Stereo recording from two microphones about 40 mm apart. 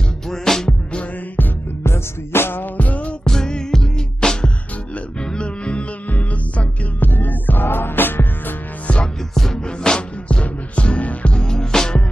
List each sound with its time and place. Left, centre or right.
0.3 s music: centre
1.8 s music: left
2.6 s music: left
3.3 s music: centre
6.1 s music: left
9.3 s music: centre
10.2 s music: left
11.3 s music: centre